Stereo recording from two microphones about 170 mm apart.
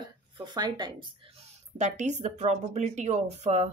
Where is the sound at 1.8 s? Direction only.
45° right (ahead or behind).